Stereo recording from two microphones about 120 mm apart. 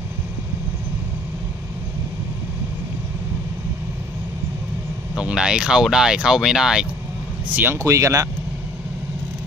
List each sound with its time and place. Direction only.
5.1 s speech: 5° right (ahead or behind)
7.5 s speech: 15° right (ahead or behind)